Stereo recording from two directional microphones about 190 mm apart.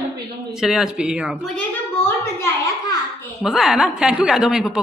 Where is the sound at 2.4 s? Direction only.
15° left (ahead or behind).